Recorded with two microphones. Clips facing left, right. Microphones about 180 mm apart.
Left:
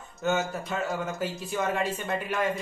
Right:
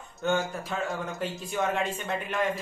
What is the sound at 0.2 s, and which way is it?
Speech, centre (ahead or behind).